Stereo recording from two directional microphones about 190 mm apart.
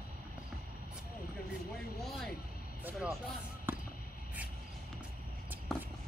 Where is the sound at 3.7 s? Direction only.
10° right (ahead or behind).